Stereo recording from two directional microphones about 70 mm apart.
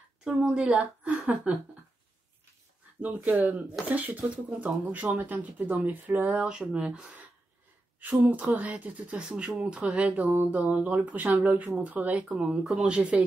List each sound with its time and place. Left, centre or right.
0.2 s speech: centre
3.0 s speech: right